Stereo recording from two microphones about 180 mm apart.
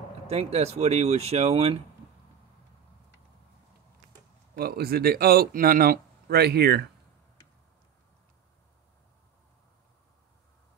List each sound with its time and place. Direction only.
0.3 s speech: 35° right (ahead or behind)
4.6 s speech: 55° right (ahead or behind)